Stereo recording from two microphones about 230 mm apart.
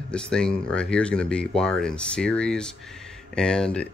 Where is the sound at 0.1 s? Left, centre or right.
Centre.